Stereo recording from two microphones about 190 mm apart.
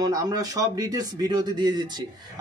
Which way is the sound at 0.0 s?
20° right (ahead or behind).